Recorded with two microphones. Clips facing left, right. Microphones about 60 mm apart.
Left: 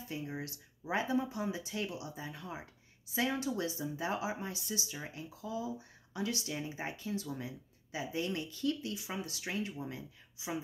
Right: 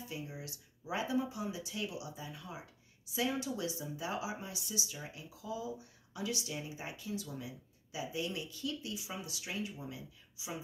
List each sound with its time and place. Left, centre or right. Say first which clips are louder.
0.1 s speech: left 7 dB; left